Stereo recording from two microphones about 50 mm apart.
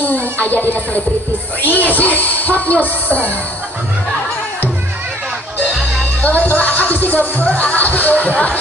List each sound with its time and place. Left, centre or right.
0.0 s music: left
1.6 s speech: left
5.7 s music: centre
6.2 s speech: left